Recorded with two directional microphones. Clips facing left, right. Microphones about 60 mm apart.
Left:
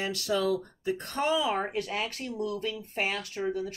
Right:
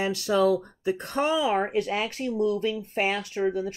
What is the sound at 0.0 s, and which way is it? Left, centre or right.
Speech, centre.